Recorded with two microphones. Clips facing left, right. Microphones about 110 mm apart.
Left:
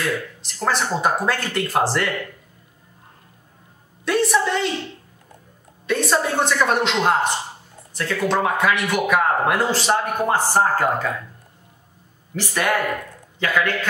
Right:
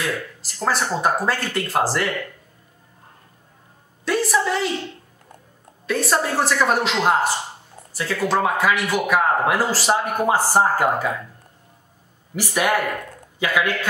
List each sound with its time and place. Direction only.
0.0 s a man's voice: 5° right (ahead or behind)
4.0 s a man's voice: centre (ahead or behind)
5.9 s a man's voice: centre (ahead or behind)
12.4 s a man's voice: 10° right (ahead or behind)